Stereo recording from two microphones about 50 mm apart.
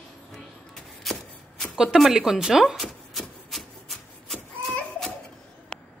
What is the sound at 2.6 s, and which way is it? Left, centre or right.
Speech, centre.